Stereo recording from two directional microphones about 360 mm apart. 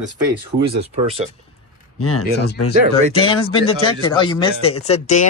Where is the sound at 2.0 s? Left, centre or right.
Left.